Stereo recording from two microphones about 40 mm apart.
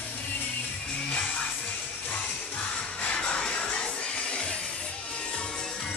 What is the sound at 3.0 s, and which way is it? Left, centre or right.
Music, left.